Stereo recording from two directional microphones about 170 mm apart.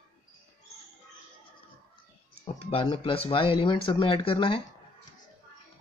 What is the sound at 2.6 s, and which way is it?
Speech, 35° left (ahead or behind).